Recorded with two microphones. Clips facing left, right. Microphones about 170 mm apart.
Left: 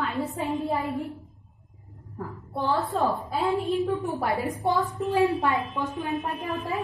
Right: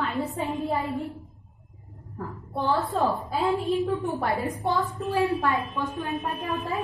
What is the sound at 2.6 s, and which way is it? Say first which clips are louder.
A woman's voice: right 1 dB; centre (ahead or behind).